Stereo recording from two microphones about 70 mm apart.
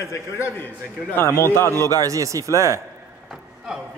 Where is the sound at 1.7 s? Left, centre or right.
Right.